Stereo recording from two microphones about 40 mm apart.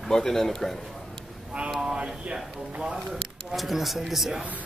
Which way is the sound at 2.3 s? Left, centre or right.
Right.